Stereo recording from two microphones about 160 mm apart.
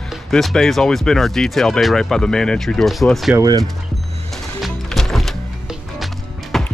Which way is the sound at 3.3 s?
20° right (ahead or behind).